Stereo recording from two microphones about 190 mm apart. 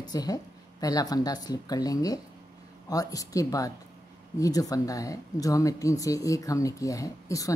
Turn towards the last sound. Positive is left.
turn(degrees=15)  # may be behind; listen again after turning